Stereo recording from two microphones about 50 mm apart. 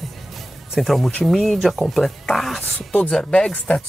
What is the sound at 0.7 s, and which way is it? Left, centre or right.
Speech, centre.